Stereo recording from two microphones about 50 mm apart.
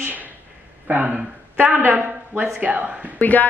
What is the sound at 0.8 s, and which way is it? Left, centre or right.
Speech, right.